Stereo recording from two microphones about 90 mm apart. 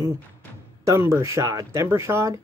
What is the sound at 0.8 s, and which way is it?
Speech, 35° right (ahead or behind).